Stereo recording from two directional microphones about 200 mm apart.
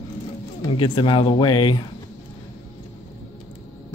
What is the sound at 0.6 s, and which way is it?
Speech, 25° left (ahead or behind).